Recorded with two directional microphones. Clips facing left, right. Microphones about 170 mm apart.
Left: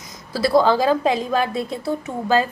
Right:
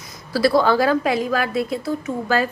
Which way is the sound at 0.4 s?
20° left (ahead or behind).